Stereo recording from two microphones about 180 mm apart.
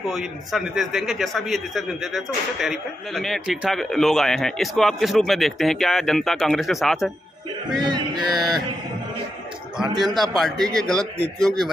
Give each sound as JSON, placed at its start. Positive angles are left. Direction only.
{"t": 0.1, "sound": "a man's voice", "side_deg": 0}
{"t": 7.8, "sound": "mantra", "side_deg": -25}
{"t": 9.8, "sound": "a man's voice", "side_deg": 0}